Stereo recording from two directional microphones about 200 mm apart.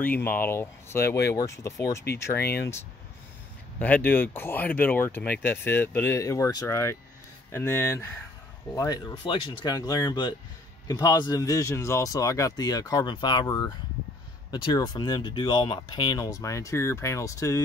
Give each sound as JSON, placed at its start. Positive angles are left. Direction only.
{"t": 0.0, "sound": "speech", "side_deg": 10}
{"t": 2.3, "sound": "speech", "side_deg": 50}
{"t": 3.8, "sound": "speech", "side_deg": 10}